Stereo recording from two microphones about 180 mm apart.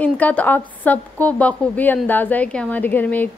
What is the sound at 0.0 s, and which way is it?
A woman's voice, 10° left (ahead or behind).